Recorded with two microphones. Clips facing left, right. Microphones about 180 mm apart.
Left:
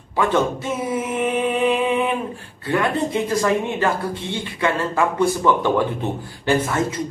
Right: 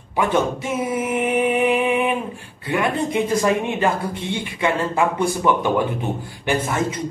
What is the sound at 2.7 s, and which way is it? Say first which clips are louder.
Speech: even; 15° right (ahead or behind).